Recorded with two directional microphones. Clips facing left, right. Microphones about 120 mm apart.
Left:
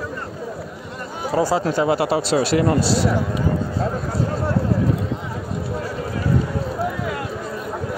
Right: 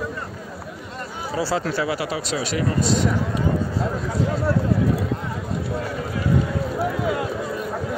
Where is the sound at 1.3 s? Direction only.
45° left (ahead or behind).